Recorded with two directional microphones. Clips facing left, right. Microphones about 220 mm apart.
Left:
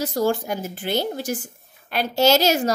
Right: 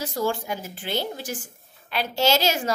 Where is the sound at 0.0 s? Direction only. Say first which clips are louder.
Left 5 dB; 40° left (ahead or behind).